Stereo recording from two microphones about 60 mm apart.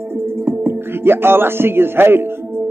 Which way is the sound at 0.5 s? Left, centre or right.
Right.